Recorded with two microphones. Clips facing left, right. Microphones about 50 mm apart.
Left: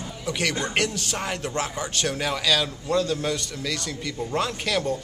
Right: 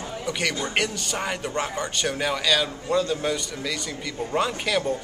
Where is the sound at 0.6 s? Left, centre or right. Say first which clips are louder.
Even; centre.